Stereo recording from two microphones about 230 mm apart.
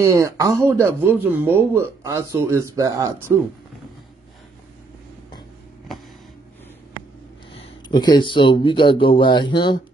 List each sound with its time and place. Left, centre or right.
0.0 s speech: centre
7.5 s speech: left